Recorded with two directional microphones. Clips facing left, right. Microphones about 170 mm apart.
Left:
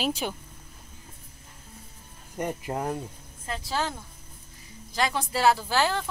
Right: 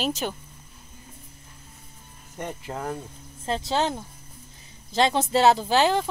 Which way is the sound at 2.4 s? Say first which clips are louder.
Left 3 dB; 15° left (ahead or behind).